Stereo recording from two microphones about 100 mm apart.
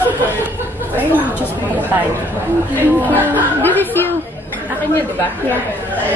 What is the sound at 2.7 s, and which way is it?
Speech, 20° left (ahead or behind).